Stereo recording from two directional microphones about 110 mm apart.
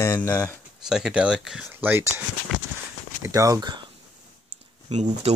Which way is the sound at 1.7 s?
20° right (ahead or behind).